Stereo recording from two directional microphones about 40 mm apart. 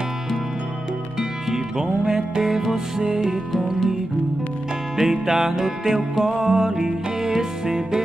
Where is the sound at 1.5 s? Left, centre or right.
Centre.